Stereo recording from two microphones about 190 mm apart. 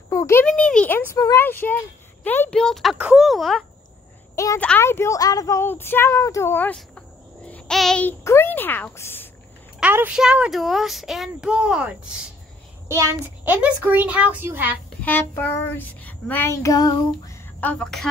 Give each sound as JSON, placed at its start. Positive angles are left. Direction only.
{"t": 0.1, "sound": "a child's voice", "side_deg": 15}
{"t": 4.4, "sound": "a woman's voice", "side_deg": 15}
{"t": 9.8, "sound": "a woman's voice", "side_deg": -10}
{"t": 15.0, "sound": "a woman's voice", "side_deg": 10}